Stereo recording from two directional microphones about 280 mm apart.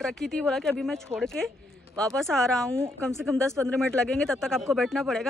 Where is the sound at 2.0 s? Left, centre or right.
Centre.